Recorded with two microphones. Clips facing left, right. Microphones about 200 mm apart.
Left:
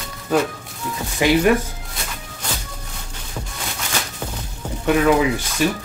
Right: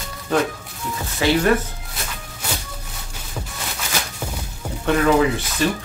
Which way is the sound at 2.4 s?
10° right (ahead or behind).